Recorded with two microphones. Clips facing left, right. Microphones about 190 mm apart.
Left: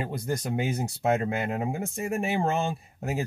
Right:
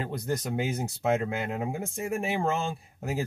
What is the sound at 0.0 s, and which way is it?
Speech, 10° left (ahead or behind).